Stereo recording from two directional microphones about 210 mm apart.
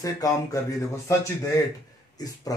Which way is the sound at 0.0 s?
15° left (ahead or behind).